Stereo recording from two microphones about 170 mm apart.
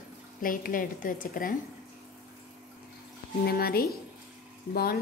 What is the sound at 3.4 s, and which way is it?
A woman's voice, 65° left (ahead or behind).